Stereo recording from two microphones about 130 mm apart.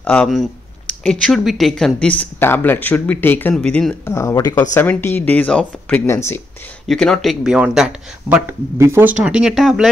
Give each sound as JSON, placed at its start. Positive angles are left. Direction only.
{"t": 0.0, "sound": "speech", "side_deg": 10}
{"t": 4.1, "sound": "speech", "side_deg": 20}
{"t": 4.6, "sound": "speech", "side_deg": 15}
{"t": 6.9, "sound": "speech", "side_deg": 5}
{"t": 8.7, "sound": "speech", "side_deg": -20}
{"t": 9.2, "sound": "speech", "side_deg": -5}